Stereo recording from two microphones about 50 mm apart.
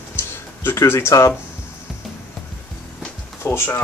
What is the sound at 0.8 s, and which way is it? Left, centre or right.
Speech, left.